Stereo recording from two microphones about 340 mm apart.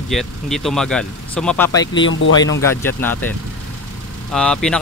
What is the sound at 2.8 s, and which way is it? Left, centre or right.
Speech, centre.